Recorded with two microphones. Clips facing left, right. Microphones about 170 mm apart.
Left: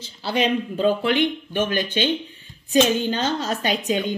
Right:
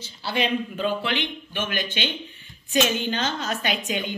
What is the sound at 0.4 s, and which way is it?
A woman's voice, 40° left (ahead or behind).